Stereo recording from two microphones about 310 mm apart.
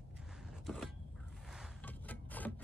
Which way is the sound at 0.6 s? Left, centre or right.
Centre.